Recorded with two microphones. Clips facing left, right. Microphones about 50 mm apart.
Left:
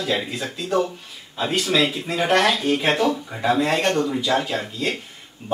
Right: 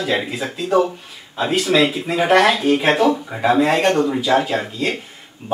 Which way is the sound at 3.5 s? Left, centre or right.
Centre.